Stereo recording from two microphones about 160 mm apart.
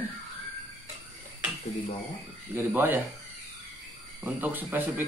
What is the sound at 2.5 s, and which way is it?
Speech, 10° right (ahead or behind).